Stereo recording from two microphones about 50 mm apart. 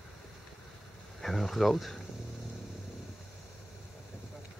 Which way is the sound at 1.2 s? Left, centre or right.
Centre.